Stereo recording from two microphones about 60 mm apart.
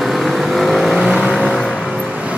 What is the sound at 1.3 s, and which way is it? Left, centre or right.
Vehicle, centre.